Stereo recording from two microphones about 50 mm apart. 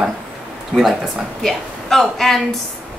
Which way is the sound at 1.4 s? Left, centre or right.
Centre.